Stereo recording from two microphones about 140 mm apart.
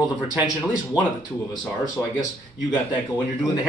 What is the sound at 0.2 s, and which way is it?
Speech, 5° right (ahead or behind).